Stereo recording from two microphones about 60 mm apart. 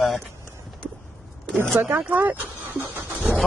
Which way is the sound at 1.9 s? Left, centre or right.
Right.